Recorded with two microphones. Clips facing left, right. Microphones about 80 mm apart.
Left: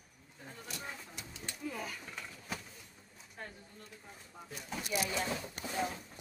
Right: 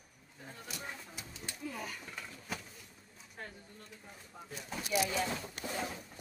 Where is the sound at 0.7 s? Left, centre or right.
Centre.